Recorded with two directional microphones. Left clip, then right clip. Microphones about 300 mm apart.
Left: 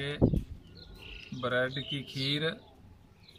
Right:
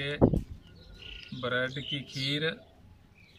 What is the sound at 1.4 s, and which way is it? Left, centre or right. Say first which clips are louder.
Speech: left 1 dB; centre.